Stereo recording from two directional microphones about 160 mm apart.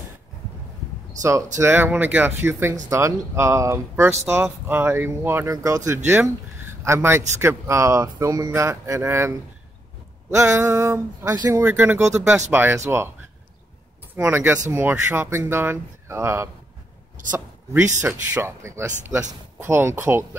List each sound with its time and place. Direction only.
1.6 s speech: 15° right (ahead or behind)
10.3 s speech: 20° right (ahead or behind)
14.1 s speech: 15° right (ahead or behind)